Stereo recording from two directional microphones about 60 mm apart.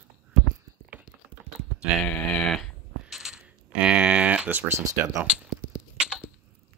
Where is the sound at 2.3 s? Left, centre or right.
Centre.